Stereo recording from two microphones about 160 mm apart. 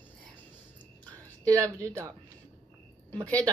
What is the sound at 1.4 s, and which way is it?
Speech, 20° right (ahead or behind).